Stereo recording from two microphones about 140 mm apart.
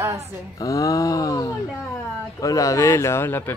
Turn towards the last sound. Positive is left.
turn(degrees=15)  # may be behind; listen again after turning